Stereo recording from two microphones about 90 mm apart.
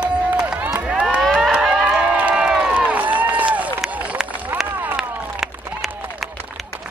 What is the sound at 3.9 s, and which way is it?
Run, 15° right (ahead or behind).